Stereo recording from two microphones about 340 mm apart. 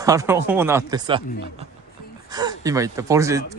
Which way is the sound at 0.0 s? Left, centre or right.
Centre.